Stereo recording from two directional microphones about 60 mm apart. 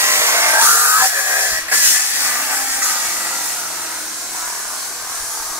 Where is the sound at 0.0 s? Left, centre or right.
Right.